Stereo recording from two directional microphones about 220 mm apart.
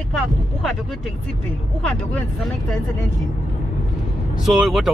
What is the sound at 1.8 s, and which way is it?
Speech, 5° left (ahead or behind).